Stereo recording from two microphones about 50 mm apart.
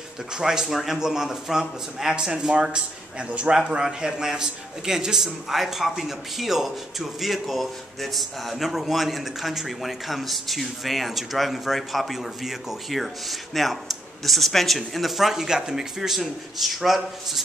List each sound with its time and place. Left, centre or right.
0.3 s a man's voice: centre